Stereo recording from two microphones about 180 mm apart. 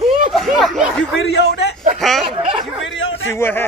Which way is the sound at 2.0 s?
Centre (ahead or behind).